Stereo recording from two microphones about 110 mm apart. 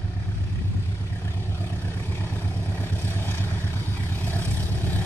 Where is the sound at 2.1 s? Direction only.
20° left (ahead or behind).